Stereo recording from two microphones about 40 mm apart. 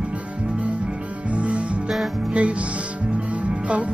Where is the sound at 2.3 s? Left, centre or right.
Right.